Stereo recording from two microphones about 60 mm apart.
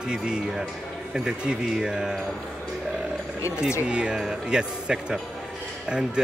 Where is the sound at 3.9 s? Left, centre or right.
Centre.